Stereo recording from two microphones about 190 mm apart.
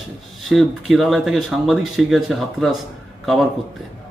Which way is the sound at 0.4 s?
Centre (ahead or behind).